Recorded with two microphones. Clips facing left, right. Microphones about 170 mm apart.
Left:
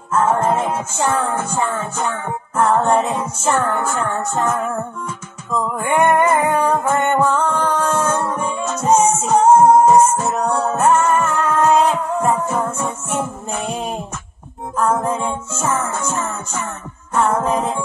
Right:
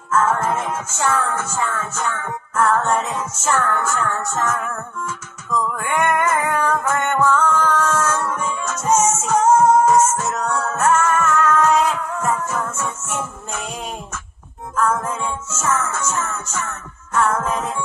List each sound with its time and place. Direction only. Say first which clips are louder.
0.1 s music: left 3 dB; 25° left (ahead or behind)